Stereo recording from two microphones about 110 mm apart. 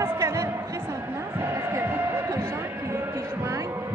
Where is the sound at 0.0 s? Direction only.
25° right (ahead or behind).